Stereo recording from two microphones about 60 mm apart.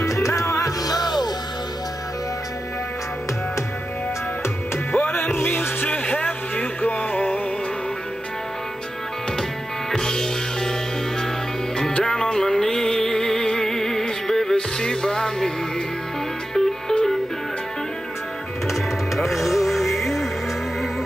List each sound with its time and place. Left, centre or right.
0.0 s music: left
4.9 s music: left
6.0 s a sound: left
9.4 s music: centre
11.7 s music: centre
16.5 s music: centre
18.7 s music: centre